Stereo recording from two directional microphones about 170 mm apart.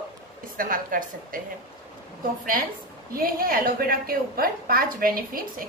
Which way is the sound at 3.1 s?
60° right (ahead or behind).